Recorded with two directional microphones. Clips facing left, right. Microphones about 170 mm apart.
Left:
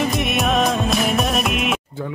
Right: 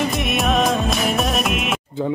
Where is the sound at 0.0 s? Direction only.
Centre (ahead or behind).